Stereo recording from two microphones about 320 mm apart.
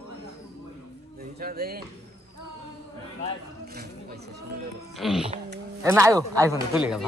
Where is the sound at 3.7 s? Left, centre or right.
Right.